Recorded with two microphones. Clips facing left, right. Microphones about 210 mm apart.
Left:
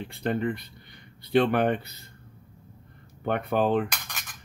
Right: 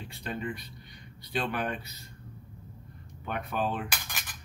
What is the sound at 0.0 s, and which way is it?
Speech, 60° left (ahead or behind).